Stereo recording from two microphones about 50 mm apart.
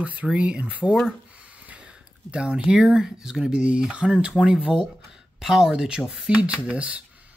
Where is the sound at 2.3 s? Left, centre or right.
Right.